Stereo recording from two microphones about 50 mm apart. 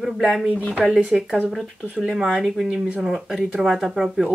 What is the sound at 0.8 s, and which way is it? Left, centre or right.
Speech, centre.